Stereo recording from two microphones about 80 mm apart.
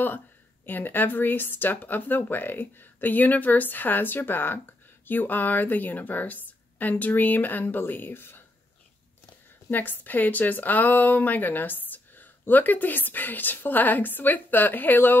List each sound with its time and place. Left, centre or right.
0.7 s speech: left
9.7 s speech: left